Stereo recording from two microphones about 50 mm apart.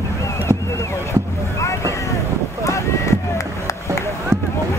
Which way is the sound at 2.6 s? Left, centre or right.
Left.